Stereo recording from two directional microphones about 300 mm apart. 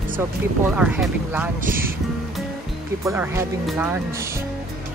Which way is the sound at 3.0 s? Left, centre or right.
Centre.